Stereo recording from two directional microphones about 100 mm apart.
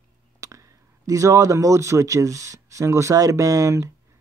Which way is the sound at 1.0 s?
35° right (ahead or behind).